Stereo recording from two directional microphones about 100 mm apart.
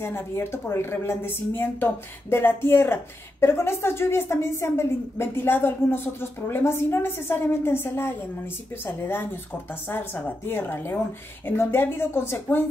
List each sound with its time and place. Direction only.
0.0 s a woman's voice: 25° left (ahead or behind)